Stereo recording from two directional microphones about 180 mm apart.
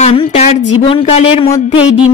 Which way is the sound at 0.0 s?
30° left (ahead or behind).